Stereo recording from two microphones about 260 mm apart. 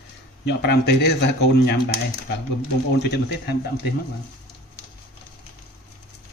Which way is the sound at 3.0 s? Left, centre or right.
Left.